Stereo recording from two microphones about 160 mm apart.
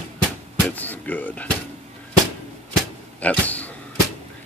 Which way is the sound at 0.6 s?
10° left (ahead or behind).